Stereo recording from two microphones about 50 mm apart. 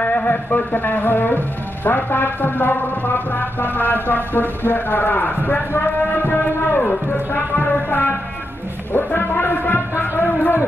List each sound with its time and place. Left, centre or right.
0.0 s music: left
1.9 s speech: left
8.9 s music: left